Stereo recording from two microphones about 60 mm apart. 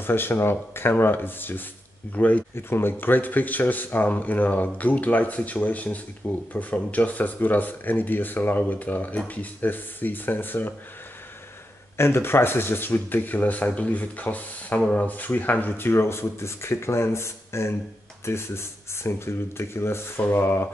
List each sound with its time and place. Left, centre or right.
0.0 s speech: left
2.1 s speech: left
2.5 s speech: left
12.0 s speech: left
15.9 s speech: left